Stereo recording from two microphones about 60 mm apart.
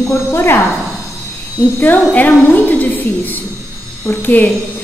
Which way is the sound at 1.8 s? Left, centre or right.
Left.